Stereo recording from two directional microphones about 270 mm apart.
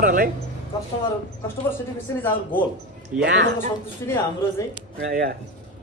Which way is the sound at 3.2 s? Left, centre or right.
Right.